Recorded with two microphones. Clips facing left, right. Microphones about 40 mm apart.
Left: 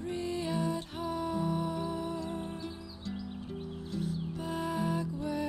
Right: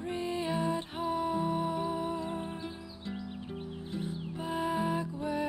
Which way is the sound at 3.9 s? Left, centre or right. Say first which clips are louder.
Left 2 dB; right.